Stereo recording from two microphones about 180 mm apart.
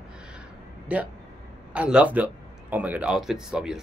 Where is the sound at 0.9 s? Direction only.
5° right (ahead or behind).